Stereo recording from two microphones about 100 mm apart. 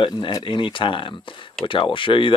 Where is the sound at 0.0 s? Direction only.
50° left (ahead or behind).